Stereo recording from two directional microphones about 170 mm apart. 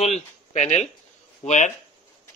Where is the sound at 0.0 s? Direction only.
40° left (ahead or behind).